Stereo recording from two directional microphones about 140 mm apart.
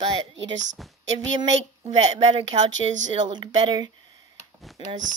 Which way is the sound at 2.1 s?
45° right (ahead or behind).